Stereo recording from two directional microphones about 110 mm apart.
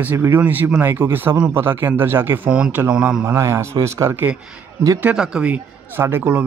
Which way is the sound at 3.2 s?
25° right (ahead or behind).